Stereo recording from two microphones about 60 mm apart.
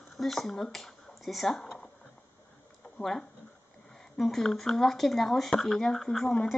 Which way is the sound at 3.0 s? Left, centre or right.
Centre.